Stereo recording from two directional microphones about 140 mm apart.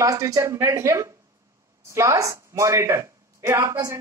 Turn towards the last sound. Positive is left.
turn(degrees=-25)  # may be behind; listen again after turning